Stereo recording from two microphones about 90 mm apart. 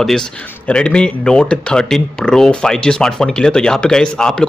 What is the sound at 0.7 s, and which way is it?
Speech, 10° left (ahead or behind).